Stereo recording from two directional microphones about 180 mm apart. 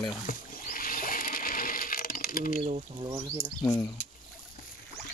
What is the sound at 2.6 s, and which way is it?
Speech, 30° right (ahead or behind).